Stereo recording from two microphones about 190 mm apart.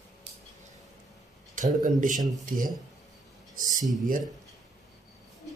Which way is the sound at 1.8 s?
45° right (ahead or behind).